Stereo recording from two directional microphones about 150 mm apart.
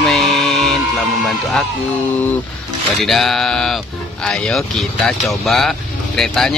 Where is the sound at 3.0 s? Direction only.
Centre (ahead or behind).